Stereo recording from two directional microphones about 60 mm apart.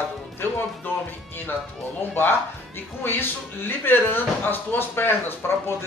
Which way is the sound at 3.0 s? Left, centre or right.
Left.